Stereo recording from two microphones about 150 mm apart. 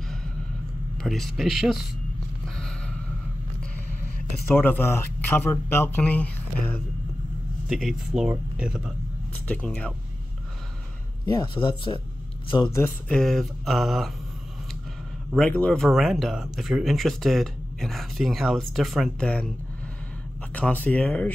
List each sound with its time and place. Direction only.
0.9 s speech: centre (ahead or behind)
2.4 s a sound: 5° left (ahead or behind)
4.5 s speech: 15° left (ahead or behind)
7.6 s speech: 5° right (ahead or behind)
9.5 s speech: 10° left (ahead or behind)
11.3 s speech: 35° left (ahead or behind)
13.1 s speech: 5° left (ahead or behind)
15.3 s speech: 5° left (ahead or behind)
20.5 s speech: 10° left (ahead or behind)